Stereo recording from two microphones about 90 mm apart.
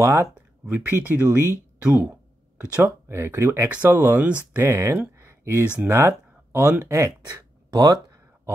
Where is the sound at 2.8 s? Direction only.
30° right (ahead or behind).